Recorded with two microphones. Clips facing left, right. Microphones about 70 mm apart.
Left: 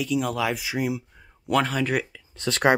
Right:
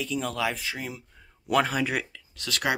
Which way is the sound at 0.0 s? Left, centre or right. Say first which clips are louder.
Left 4 dB; centre.